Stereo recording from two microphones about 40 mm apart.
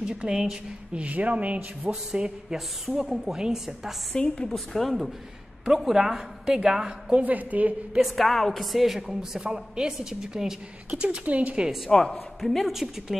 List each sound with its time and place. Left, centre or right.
0.0 s a woman's voice: centre
0.9 s speech: right
2.2 s a man's voice: right
3.0 s a woman's voice: centre
4.1 s a man's voice: left
4.5 s a woman's voice: centre
5.7 s a woman's voice: centre
7.2 s a woman's voice: right
8.0 s a woman's voice: centre
9.0 s a woman's voice: centre
10.9 s speech: right
11.9 s a man's voice: centre
12.4 s a woman's voice: centre